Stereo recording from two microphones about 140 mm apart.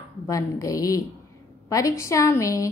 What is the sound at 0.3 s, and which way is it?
A woman's voice, 25° left (ahead or behind).